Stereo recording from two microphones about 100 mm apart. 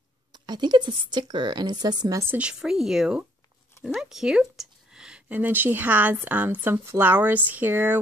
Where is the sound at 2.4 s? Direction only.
10° right (ahead or behind).